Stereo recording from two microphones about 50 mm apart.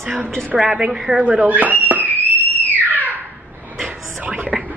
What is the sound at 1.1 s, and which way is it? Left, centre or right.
Speech, right.